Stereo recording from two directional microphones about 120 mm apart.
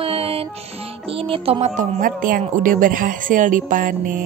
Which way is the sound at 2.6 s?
90° right.